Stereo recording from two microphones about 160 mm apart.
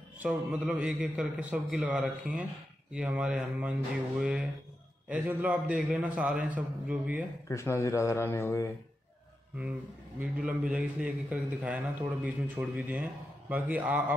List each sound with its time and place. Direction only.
0.2 s a man's voice: 5° right (ahead or behind)
7.4 s speech: 15° left (ahead or behind)
9.6 s a man's voice: 10° right (ahead or behind)